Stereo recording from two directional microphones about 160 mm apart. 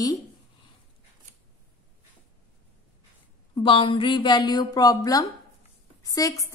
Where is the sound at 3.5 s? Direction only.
30° left (ahead or behind).